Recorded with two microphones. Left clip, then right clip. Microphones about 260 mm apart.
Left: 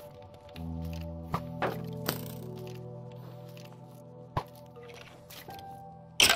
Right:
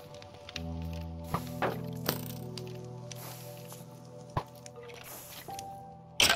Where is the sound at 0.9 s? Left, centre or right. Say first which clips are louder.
Left 1 dB; centre.